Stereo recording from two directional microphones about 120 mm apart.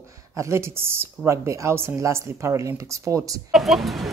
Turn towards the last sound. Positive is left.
turn(degrees=0)  # may be behind; listen again after turning